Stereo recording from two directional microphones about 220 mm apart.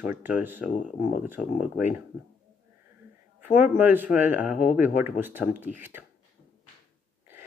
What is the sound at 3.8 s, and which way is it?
Speech, 10° right (ahead or behind).